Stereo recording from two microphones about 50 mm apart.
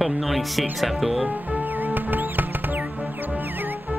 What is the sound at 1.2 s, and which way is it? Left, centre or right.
Music, right.